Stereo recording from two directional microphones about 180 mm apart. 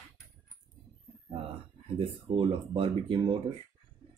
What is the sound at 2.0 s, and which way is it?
Speech, 30° right (ahead or behind).